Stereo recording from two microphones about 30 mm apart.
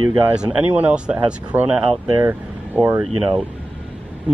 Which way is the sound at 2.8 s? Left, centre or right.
Left.